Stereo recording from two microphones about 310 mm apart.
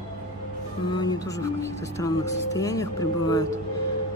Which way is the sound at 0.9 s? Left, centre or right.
Centre.